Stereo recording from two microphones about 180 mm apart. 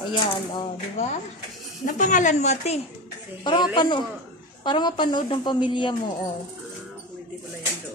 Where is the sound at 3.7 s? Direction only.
25° left (ahead or behind).